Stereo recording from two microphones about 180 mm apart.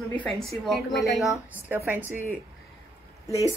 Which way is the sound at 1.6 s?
10° right (ahead or behind).